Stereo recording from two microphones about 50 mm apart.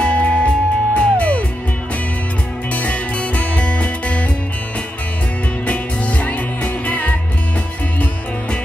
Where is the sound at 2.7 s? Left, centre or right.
Left.